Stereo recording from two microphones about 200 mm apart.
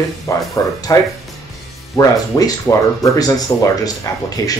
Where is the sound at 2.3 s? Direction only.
10° left (ahead or behind).